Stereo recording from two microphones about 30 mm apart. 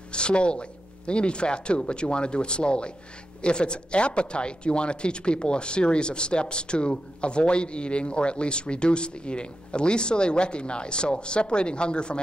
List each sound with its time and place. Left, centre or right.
0.1 s speech: left